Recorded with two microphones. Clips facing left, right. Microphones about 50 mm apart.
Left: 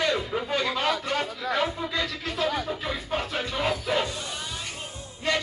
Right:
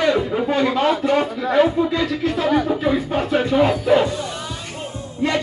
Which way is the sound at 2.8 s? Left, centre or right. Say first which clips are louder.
Right 10 dB; right.